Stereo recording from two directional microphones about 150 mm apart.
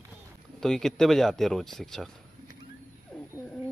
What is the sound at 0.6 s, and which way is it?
Speech, centre (ahead or behind).